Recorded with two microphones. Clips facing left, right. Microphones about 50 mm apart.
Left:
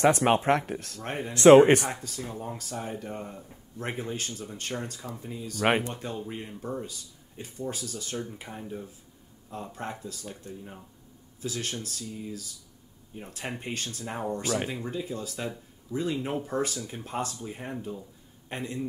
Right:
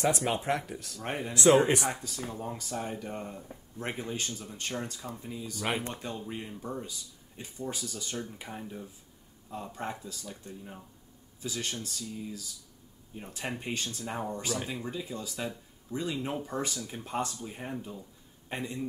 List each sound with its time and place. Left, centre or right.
0.0 s speech: left
1.9 s speech: centre